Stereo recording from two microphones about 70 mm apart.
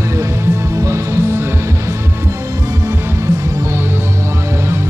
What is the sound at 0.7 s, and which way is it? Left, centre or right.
Music, right.